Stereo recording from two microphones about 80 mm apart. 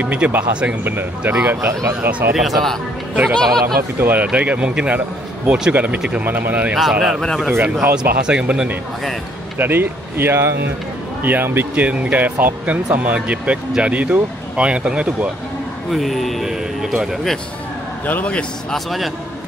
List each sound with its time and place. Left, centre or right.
0.0 s speech: centre
1.6 s speech: right
2.0 s speech: centre
2.3 s speech: centre
4.0 s speech: right
6.7 s speech: centre
9.6 s speech: right
11.7 s speech: centre
15.9 s speech: centre
18.0 s a man's voice: centre
18.9 s speech: centre